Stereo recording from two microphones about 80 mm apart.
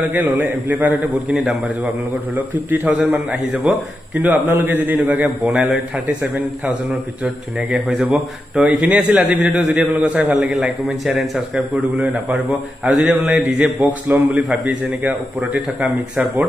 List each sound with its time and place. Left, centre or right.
0.1 s a man's voice: right
1.3 s a man's voice: centre
2.7 s a man's voice: centre
5.4 s speech: centre
6.2 s a man's voice: centre
8.1 s a man's voice: centre
10.4 s speech: centre
11.5 s a man's voice: centre
13.6 s a man's voice: centre
14.5 s a man's voice: centre
15.0 s a man's voice: centre